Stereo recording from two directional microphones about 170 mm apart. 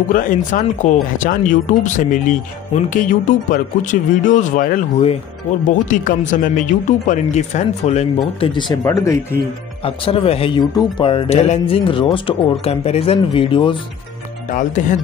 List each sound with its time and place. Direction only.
0.1 s speech: 55° left (ahead or behind)
8.4 s speech: 30° left (ahead or behind)
8.8 s speech: 15° left (ahead or behind)
9.8 s speech: 35° left (ahead or behind)
14.5 s speech: 50° left (ahead or behind)